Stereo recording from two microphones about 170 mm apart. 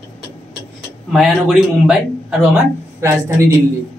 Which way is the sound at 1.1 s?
5° right (ahead or behind).